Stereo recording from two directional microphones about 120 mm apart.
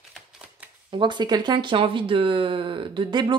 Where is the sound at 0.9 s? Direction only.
40° right (ahead or behind).